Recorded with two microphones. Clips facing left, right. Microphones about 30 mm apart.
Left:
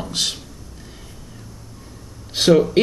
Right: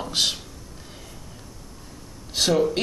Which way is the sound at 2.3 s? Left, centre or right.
Left.